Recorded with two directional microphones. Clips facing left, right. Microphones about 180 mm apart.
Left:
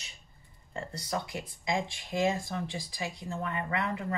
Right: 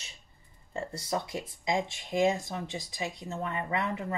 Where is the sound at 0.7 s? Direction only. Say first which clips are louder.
Right 2 dB; 25° right (ahead or behind).